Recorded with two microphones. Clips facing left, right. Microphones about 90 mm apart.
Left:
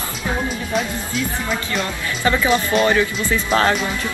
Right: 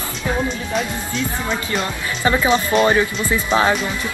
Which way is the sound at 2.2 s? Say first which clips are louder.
Right 1 dB; 25° right (ahead or behind).